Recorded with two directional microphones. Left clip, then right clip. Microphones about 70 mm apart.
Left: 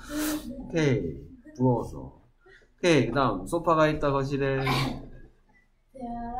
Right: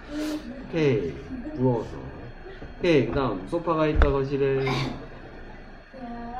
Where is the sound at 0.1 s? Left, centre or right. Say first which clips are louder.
Even; left.